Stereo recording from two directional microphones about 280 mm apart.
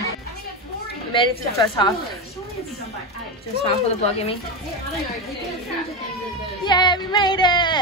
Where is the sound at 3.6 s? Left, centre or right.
Left.